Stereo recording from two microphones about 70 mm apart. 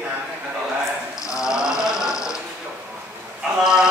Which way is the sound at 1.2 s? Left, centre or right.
Centre.